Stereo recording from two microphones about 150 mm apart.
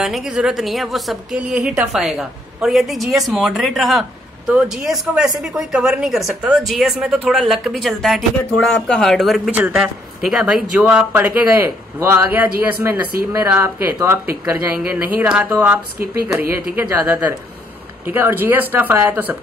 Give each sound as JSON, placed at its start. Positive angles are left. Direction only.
{"t": 0.0, "sound": "speech", "side_deg": -5}